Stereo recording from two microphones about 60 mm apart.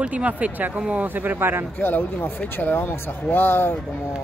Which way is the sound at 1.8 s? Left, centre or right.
Left.